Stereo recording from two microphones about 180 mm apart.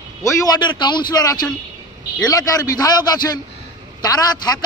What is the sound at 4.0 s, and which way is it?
Speech, 20° left (ahead or behind).